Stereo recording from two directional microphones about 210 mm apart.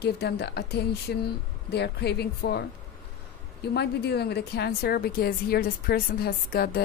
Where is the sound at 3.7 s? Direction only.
50° left (ahead or behind).